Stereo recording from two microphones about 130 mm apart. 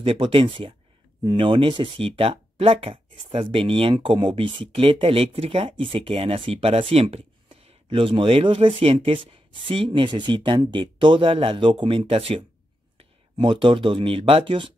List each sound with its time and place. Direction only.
0.0 s speech: 45° right (ahead or behind)